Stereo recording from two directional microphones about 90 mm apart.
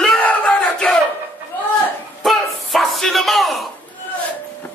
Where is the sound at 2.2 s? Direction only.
Centre (ahead or behind).